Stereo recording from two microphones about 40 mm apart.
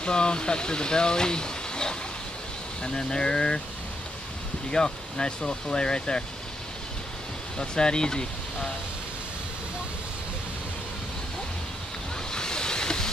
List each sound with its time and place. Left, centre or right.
0.0 s speech: left
4.6 s speech: centre
7.5 s speech: centre
12.3 s waves: centre